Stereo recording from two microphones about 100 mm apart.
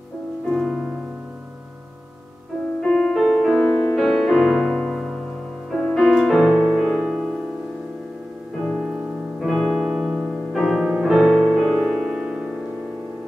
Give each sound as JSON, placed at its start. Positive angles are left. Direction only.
{"t": 0.5, "sound": "music", "side_deg": 0}
{"t": 2.8, "sound": "music", "side_deg": 5}
{"t": 8.6, "sound": "music", "side_deg": 0}
{"t": 8.9, "sound": "piano", "side_deg": -5}